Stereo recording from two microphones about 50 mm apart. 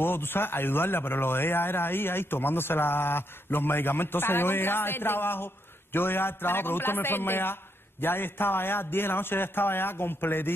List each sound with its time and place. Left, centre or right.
0.0 s speech: left